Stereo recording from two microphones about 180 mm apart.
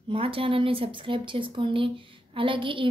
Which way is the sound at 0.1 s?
30° right (ahead or behind).